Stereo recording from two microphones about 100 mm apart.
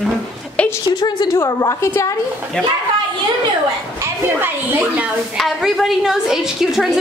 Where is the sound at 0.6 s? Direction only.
10° left (ahead or behind).